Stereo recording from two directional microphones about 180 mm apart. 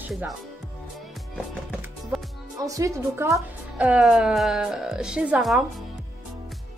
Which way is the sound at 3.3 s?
5° right (ahead or behind).